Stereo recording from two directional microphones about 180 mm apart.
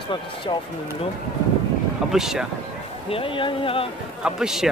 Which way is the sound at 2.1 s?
5° right (ahead or behind).